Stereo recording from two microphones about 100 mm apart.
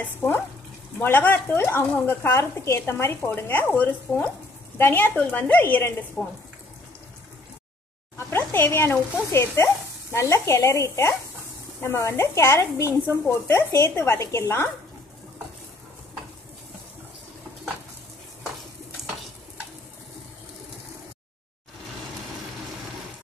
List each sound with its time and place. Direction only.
0.9 s speech: 20° left (ahead or behind)
6.2 s speech: 10° left (ahead or behind)
8.2 s speech: 25° left (ahead or behind)